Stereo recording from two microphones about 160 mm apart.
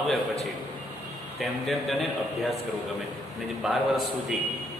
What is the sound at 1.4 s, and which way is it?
A man's voice, centre (ahead or behind).